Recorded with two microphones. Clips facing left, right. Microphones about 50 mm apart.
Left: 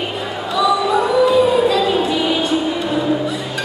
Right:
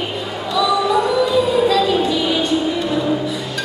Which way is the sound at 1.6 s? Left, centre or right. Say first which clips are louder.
Even; centre.